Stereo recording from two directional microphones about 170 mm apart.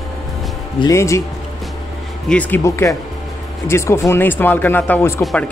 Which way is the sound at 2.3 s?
10° left (ahead or behind).